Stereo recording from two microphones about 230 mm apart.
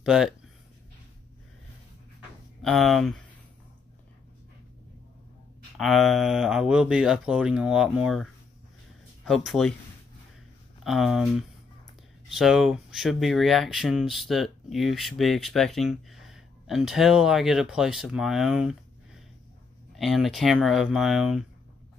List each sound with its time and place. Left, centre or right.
0.0 s speech: centre
2.6 s speech: centre
5.8 s speech: centre
10.8 s speech: centre
20.0 s speech: centre